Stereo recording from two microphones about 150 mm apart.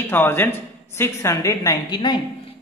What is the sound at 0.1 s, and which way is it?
Speech, 15° left (ahead or behind).